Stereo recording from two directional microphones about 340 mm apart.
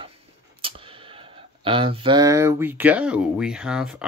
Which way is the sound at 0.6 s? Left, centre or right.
Centre.